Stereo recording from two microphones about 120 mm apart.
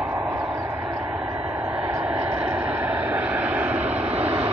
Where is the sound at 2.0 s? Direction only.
10° right (ahead or behind).